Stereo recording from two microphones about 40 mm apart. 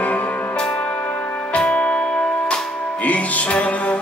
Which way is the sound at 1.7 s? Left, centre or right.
Left.